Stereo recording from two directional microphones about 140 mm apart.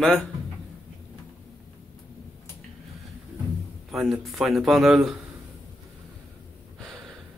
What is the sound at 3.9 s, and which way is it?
A man's voice, centre (ahead or behind).